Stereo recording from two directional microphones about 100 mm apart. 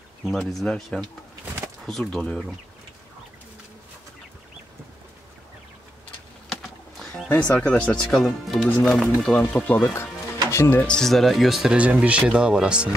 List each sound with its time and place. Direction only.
0.2 s speech: centre (ahead or behind)
6.5 s a sound: 5° left (ahead or behind)
7.2 s speech: 15° left (ahead or behind)
9.4 s speech: 20° left (ahead or behind)
10.8 s speech: 10° left (ahead or behind); by 12.9 s 10° right (ahead or behind)